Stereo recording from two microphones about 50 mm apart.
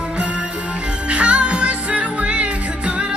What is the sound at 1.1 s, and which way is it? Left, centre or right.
Music, right.